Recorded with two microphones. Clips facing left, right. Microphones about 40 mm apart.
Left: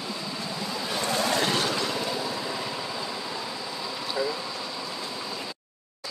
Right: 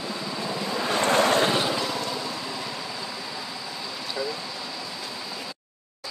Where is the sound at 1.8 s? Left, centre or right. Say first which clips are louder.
Even; centre.